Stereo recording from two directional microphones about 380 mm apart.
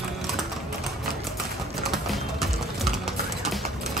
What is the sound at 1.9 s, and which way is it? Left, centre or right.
Music, centre.